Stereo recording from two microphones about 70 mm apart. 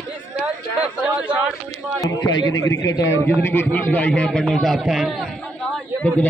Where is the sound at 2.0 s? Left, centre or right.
Left.